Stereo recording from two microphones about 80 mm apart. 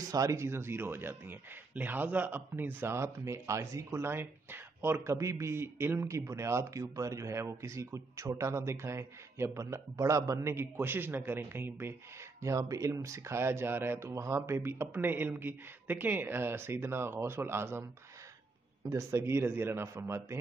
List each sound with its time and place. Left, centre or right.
0.0 s speech: right
12.4 s speech: right
18.9 s speech: right